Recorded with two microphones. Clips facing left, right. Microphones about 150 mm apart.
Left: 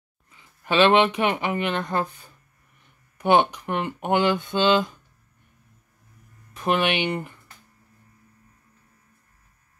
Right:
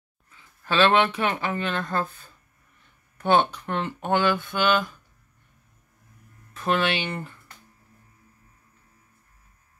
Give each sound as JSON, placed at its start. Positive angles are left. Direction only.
{"t": 0.3, "sound": "speech", "side_deg": 15}
{"t": 6.5, "sound": "speech", "side_deg": 15}